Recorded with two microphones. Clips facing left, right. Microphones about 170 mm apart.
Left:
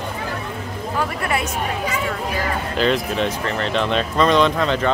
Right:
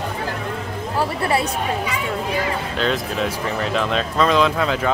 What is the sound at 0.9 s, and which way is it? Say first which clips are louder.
Speech: right 3 dB; 30° right (ahead or behind).